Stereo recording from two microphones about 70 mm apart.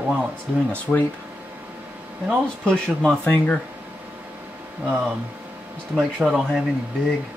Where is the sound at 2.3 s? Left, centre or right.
Centre.